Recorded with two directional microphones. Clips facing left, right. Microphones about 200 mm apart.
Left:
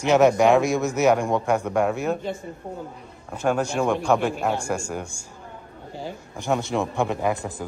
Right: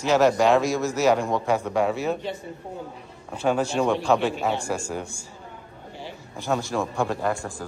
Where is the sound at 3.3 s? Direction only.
10° left (ahead or behind).